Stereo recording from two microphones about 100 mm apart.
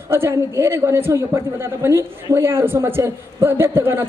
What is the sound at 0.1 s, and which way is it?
A man's voice, 25° right (ahead or behind).